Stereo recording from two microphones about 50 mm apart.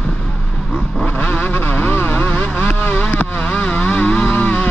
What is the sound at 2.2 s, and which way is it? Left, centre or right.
Vehicle, left.